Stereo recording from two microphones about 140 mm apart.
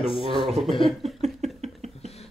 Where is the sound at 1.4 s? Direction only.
50° right (ahead or behind).